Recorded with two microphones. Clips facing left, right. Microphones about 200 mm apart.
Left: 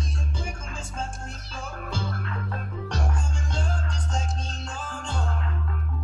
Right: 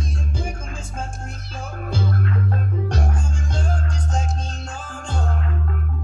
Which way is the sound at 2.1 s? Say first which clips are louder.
Right 9 dB; 45° right (ahead or behind).